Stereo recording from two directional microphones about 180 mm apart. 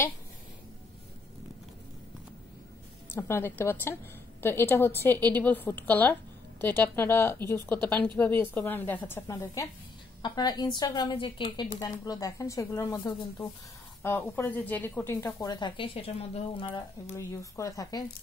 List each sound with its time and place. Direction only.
3.2 s a woman's voice: 15° left (ahead or behind); by 16.8 s 30° left (ahead or behind)
17.1 s a woman's voice: 15° left (ahead or behind)